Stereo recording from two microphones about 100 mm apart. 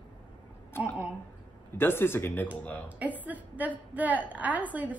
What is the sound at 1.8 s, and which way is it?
Speech, 20° left (ahead or behind).